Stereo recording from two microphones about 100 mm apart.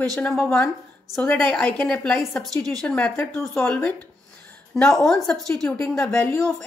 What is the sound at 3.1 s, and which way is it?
Speech, 25° left (ahead or behind).